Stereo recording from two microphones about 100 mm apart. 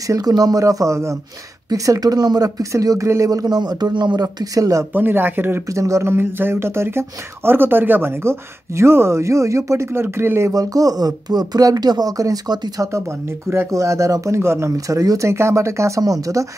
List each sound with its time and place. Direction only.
0.0 s speech: 40° right (ahead or behind)
4.9 s speech: 20° right (ahead or behind)
5.7 s speech: 30° right (ahead or behind)